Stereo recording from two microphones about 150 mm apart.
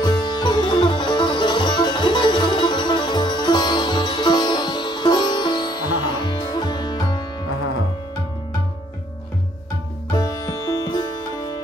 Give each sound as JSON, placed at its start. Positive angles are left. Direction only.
{"t": 0.0, "sound": "music", "side_deg": 30}
{"t": 10.1, "sound": "sitar", "side_deg": 25}